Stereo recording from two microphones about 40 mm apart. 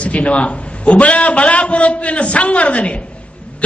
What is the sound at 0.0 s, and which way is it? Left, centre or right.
A man's voice, left.